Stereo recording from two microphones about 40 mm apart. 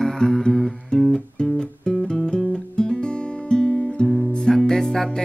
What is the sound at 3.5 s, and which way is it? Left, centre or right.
Music, left.